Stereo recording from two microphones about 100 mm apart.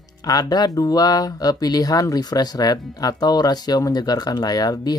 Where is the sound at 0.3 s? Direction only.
40° left (ahead or behind).